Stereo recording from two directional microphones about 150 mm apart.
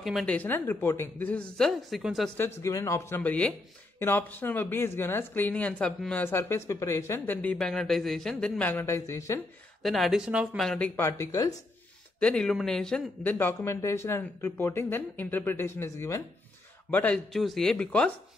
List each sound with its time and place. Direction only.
0.0 s speech: centre (ahead or behind)
2.3 s speech: 15° left (ahead or behind)
9.8 s speech: centre (ahead or behind)
11.0 s speech: 20° left (ahead or behind)
12.2 s speech: 5° left (ahead or behind)
17.3 s speech: centre (ahead or behind)